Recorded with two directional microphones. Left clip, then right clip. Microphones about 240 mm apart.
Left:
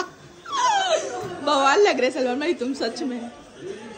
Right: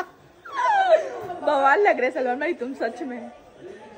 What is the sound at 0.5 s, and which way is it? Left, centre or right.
Speech, centre.